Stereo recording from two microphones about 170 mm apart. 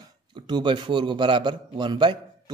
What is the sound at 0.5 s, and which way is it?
A man's voice, 25° right (ahead or behind).